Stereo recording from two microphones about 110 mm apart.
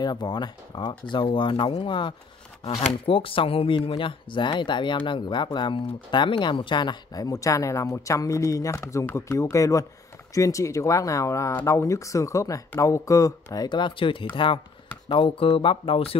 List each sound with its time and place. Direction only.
0.0 s speech: 40° left (ahead or behind); by 16.2 s 60° left (ahead or behind)